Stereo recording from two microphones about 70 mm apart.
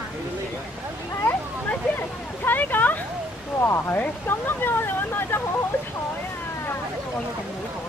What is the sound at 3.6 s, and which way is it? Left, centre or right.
Speech, left.